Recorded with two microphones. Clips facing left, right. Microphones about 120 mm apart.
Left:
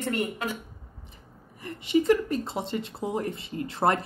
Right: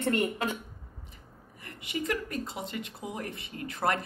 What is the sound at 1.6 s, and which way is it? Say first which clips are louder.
Speech: left 11 dB; 25° left (ahead or behind).